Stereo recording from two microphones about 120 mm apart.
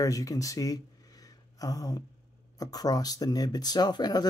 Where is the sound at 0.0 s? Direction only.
30° left (ahead or behind).